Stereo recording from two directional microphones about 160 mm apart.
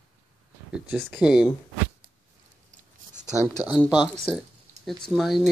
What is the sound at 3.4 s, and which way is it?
Speech, 10° right (ahead or behind).